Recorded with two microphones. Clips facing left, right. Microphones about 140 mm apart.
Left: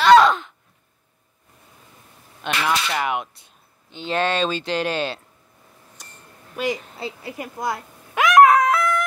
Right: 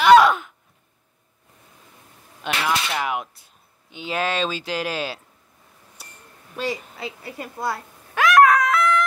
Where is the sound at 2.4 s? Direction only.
5° right (ahead or behind).